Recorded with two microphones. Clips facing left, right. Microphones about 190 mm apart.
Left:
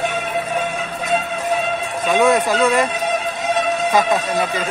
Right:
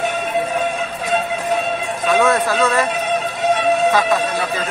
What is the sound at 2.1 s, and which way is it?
Speech, 15° left (ahead or behind).